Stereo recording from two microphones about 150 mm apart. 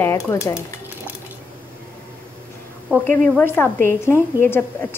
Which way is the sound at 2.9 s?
10° right (ahead or behind).